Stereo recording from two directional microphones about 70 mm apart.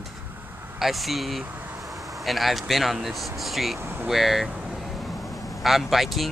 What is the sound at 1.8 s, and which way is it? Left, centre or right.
Speech, centre.